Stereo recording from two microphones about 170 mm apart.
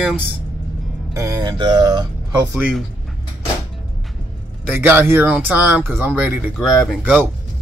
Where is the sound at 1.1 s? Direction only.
20° right (ahead or behind).